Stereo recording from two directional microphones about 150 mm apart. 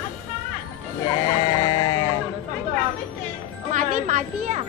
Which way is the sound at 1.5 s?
30° left (ahead or behind).